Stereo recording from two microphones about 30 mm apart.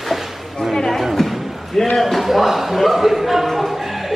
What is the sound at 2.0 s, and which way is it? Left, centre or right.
Speech, centre.